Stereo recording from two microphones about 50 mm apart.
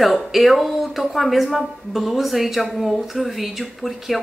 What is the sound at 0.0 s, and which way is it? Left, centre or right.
Speech, centre.